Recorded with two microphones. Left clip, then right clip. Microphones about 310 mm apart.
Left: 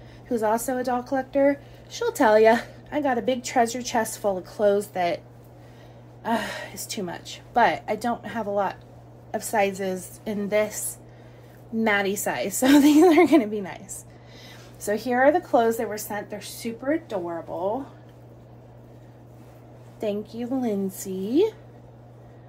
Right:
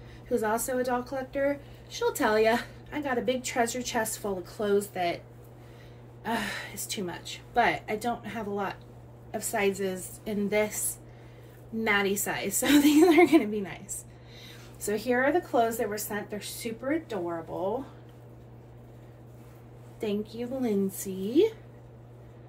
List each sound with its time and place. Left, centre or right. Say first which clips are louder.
0.3 s speech: left 4 dB; left
6.2 s speech: left 5 dB; left
20.0 s speech: left 4 dB; left